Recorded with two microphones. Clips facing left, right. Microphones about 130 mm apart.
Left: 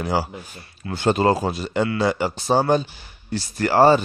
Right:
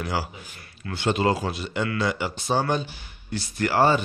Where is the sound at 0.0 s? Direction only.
35° left (ahead or behind).